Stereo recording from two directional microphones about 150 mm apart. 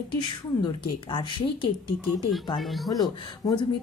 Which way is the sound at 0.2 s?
30° left (ahead or behind).